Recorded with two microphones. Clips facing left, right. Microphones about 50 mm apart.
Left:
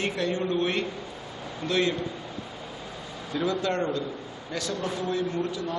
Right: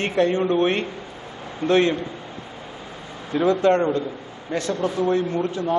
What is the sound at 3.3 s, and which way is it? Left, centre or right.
A man's voice, right.